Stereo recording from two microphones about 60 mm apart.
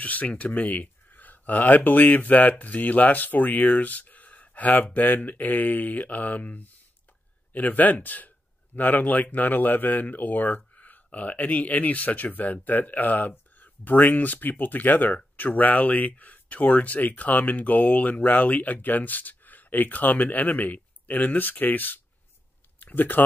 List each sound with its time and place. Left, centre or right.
0.0 s speech: left